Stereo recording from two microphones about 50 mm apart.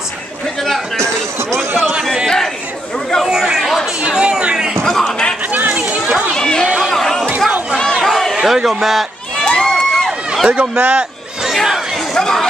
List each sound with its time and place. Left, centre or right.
2.2 s chatter: centre
3.3 s chatter: centre
4.0 s speech: centre
4.8 s a sound: centre
5.5 s children playing: right
6.3 s chatter: centre
6.9 s a sound: centre
7.7 s crowd: centre
8.4 s a man's voice: centre
9.4 s crowd: centre
10.0 s run: centre
10.5 s speech: right
11.4 s a sound: centre
12.1 s speech: centre